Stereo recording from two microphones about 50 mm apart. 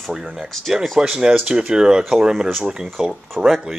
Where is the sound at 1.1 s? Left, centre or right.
Centre.